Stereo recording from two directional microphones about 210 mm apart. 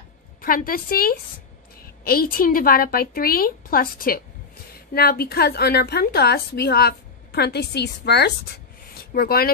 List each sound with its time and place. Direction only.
0.4 s a woman's voice: 45° left (ahead or behind)
2.3 s a woman's voice: 45° left (ahead or behind)